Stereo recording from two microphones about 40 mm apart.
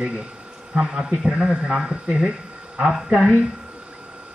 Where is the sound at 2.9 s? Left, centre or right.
Centre.